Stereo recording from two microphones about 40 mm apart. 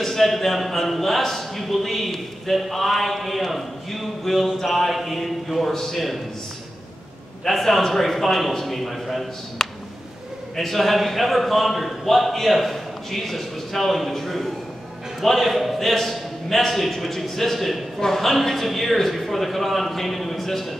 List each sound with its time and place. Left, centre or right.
0.0 s a man's voice: centre
7.4 s a man's voice: centre
9.6 s a sound: centre
10.5 s a man's voice: centre